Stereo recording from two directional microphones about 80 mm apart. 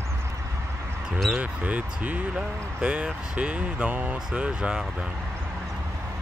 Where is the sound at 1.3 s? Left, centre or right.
Centre.